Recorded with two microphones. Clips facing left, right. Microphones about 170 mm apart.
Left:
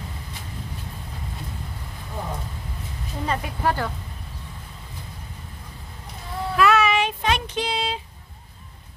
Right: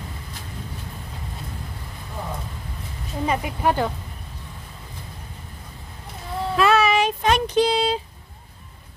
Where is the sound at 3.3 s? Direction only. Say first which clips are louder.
Right 2 dB; 20° right (ahead or behind).